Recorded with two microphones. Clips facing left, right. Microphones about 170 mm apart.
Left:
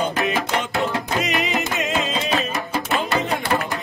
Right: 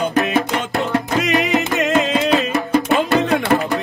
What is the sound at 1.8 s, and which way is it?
Music, 70° right (ahead or behind).